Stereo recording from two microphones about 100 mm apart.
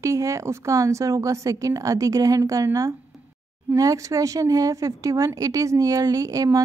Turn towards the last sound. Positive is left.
turn(degrees=-35)  # may be behind; listen again after turning